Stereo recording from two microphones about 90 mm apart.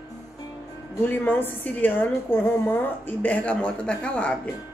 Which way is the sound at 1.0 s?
20° left (ahead or behind).